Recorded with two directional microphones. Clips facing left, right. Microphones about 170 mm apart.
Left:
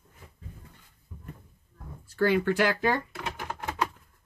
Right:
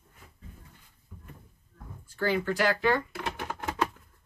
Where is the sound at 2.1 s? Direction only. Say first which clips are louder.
Left 4 dB; 55° left (ahead or behind).